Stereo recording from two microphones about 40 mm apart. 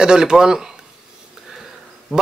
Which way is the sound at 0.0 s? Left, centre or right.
Centre.